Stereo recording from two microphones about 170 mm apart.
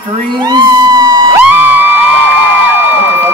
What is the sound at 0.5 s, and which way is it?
Music, 25° right (ahead or behind).